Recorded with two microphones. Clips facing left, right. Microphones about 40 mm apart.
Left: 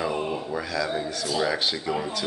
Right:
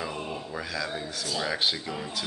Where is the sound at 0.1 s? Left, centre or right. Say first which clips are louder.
Left 7 dB; left.